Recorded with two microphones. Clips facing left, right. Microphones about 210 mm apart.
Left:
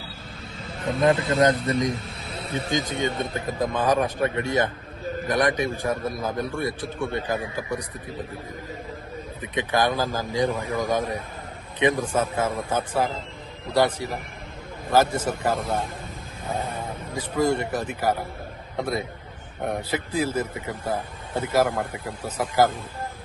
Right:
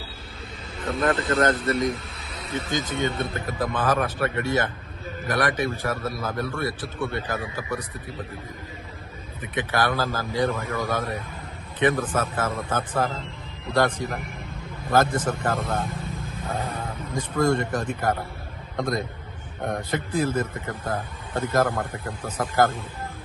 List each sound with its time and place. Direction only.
1.0 s speech: 15° left (ahead or behind)
2.9 s speech: 15° left (ahead or behind)
9.6 s speech: 15° left (ahead or behind)